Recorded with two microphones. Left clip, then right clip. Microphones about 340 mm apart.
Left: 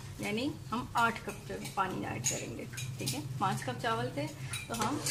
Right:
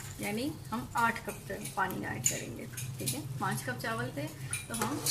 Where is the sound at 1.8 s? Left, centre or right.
Centre.